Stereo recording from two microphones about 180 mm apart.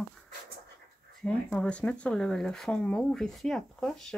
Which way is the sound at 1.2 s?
5° left (ahead or behind).